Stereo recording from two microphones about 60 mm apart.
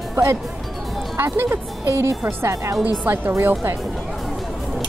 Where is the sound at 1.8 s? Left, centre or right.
Right.